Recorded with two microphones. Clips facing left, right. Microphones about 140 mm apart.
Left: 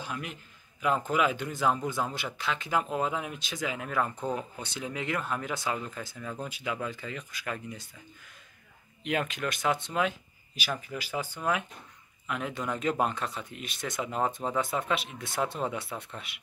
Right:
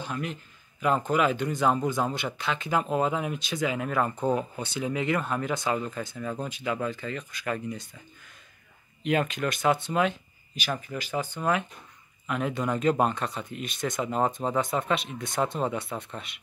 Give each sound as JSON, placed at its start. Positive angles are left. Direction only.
{"t": 0.0, "sound": "a man's voice", "side_deg": 5}
{"t": 9.0, "sound": "speech", "side_deg": 0}
{"t": 14.1, "sound": "speech", "side_deg": -30}
{"t": 14.6, "sound": "speech", "side_deg": 5}